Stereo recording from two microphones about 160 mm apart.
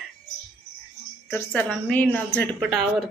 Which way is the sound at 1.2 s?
10° left (ahead or behind).